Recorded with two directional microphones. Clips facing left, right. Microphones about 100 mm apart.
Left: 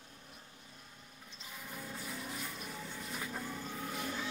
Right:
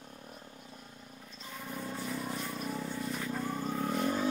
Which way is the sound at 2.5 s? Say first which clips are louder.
Right 8 dB; 35° right (ahead or behind).